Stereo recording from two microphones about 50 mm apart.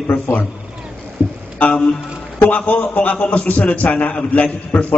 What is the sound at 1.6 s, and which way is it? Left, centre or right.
A man's voice, left.